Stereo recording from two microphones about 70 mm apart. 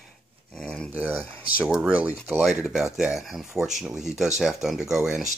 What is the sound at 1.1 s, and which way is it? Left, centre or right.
Speech, right.